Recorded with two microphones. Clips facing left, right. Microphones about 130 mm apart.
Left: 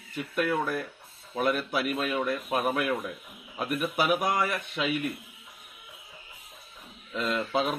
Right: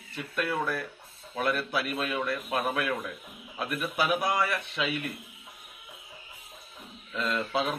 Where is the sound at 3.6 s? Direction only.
15° left (ahead or behind).